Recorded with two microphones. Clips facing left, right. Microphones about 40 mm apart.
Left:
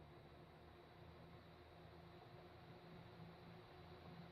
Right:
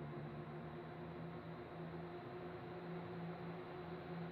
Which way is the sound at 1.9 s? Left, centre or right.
Right.